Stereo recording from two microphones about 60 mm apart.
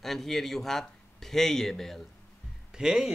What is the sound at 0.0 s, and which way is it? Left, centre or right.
A man's voice, centre.